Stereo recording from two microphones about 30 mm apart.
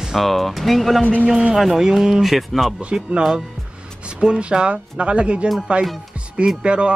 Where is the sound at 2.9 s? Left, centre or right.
Right.